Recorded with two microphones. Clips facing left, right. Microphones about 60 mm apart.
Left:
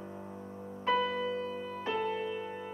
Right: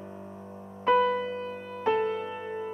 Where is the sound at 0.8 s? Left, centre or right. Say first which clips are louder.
Right 7 dB; right.